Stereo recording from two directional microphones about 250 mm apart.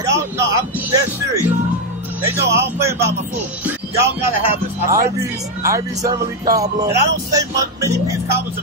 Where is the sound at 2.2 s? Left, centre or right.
Centre.